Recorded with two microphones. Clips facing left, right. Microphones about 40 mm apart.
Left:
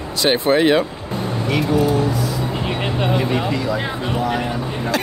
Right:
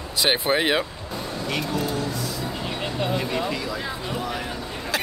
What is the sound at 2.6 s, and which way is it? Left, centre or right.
Music, left.